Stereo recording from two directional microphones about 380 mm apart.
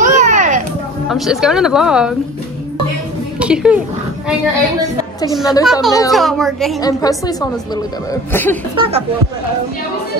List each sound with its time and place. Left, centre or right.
0.0 s children playing: centre
1.0 s a woman's voice: centre
3.3 s a woman's voice: centre
5.2 s a woman's voice: centre
8.7 s speech: centre